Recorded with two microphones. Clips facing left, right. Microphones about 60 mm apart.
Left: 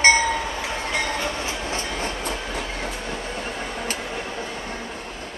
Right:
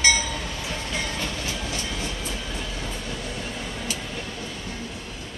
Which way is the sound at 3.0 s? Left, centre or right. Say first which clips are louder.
Left 3 dB; left.